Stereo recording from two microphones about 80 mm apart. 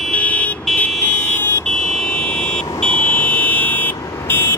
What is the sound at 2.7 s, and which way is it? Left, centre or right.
Buzzer, centre.